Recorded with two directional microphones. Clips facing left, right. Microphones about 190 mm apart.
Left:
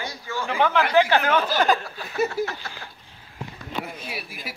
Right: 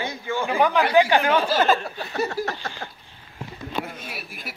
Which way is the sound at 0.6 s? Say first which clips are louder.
Right 1 dB; 15° right (ahead or behind).